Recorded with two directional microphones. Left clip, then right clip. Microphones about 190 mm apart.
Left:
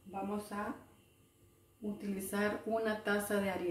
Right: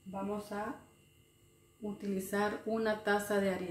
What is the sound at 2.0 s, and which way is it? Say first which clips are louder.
A woman's voice: right 3 dB; 25° right (ahead or behind).